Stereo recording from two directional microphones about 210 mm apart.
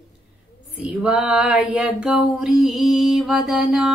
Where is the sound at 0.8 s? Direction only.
5° right (ahead or behind).